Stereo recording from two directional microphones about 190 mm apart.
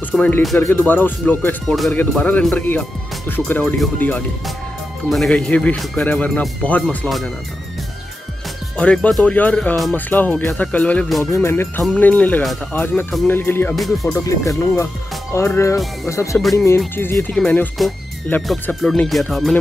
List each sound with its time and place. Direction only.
0.1 s speech: 5° left (ahead or behind)
8.7 s speech: 5° left (ahead or behind)
13.7 s speech: centre (ahead or behind)
14.1 s speech: 15° left (ahead or behind)